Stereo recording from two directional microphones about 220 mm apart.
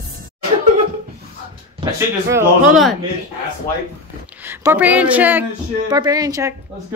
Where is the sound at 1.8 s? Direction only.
15° right (ahead or behind).